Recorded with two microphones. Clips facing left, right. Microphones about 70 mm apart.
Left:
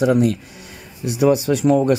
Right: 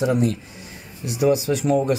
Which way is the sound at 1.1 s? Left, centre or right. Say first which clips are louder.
Left 3 dB; left.